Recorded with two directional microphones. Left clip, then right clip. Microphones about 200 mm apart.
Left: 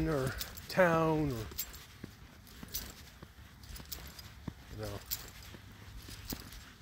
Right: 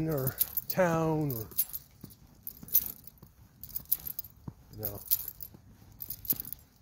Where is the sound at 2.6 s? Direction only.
10° right (ahead or behind).